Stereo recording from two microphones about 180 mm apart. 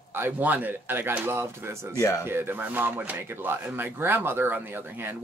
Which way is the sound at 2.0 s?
15° left (ahead or behind).